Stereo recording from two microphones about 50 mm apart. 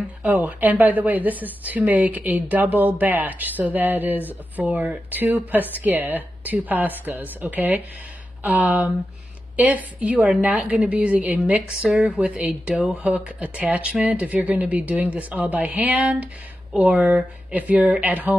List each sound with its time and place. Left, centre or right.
0.2 s speech: right
11.8 s speech: centre
12.3 s speech: right